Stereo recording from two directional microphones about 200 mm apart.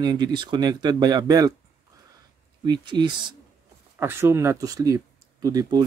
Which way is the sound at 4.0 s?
10° right (ahead or behind).